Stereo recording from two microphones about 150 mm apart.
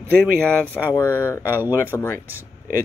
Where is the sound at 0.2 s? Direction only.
5° left (ahead or behind).